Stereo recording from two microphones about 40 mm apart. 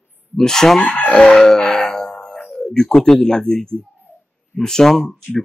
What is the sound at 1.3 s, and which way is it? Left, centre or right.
Music, centre.